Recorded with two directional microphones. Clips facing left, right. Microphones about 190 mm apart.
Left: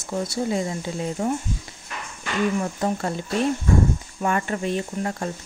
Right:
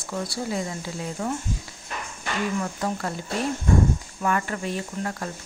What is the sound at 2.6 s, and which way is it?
Speech, 25° left (ahead or behind).